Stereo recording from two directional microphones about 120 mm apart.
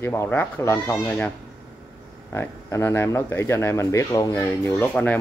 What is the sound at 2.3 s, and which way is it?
Speech, 20° left (ahead or behind).